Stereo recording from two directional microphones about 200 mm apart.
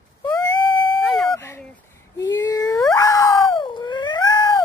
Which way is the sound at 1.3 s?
15° left (ahead or behind).